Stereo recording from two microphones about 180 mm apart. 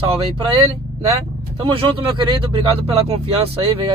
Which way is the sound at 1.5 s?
30° right (ahead or behind).